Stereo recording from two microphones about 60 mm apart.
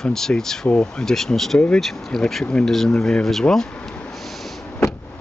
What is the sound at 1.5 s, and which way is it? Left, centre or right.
Speech, left.